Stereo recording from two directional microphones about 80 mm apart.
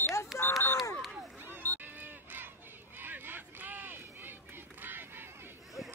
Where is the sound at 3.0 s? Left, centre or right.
Right.